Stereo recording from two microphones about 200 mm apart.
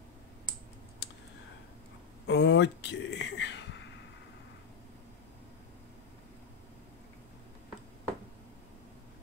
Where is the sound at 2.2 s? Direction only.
60° left (ahead or behind).